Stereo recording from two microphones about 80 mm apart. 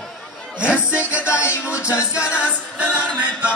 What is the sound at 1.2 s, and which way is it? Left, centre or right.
Music, left.